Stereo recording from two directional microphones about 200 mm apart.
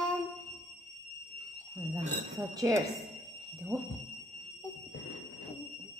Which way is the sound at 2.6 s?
15° right (ahead or behind).